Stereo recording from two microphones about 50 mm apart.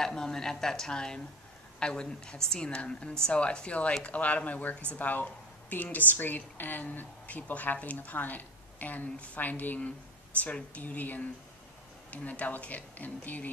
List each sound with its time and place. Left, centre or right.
0.0 s a woman's voice: centre; by 13.5 s left